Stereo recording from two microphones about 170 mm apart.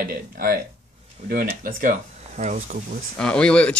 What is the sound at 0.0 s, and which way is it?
Speech, 55° right (ahead or behind).